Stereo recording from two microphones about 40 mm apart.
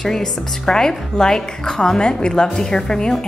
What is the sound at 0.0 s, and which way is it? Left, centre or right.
A woman's voice, centre.